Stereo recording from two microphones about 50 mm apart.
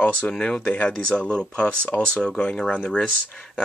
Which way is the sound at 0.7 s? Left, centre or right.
Left.